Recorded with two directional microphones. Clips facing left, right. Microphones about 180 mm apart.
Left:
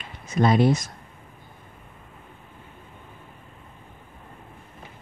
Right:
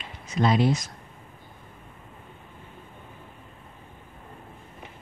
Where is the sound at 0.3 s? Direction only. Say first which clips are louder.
Left 3 dB; 50° left (ahead or behind).